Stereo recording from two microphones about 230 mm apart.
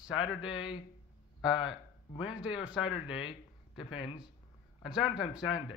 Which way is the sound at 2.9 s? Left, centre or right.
Left.